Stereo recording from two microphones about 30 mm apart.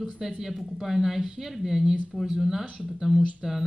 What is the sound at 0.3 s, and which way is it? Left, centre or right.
Speech, centre.